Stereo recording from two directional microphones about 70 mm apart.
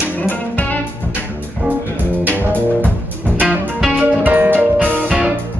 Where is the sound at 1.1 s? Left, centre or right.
Right.